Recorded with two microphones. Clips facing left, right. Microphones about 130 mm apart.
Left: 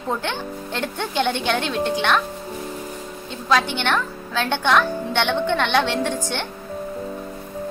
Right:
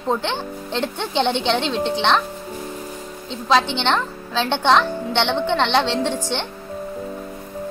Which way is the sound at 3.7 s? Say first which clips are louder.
Right 2 dB; 20° right (ahead or behind).